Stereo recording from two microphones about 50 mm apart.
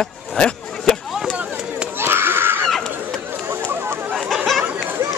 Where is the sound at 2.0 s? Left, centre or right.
Right.